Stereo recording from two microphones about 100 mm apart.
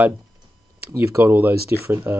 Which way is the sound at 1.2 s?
20° right (ahead or behind).